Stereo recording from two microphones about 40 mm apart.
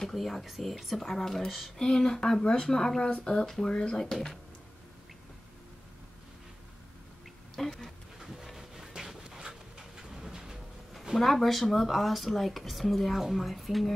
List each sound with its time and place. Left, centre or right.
0.1 s speech: centre
7.5 s speech: centre
8.2 s dog: centre
9.3 s a sound: centre
11.1 s speech: centre